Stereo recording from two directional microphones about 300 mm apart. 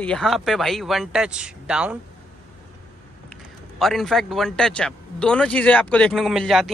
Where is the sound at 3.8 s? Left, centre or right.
Centre.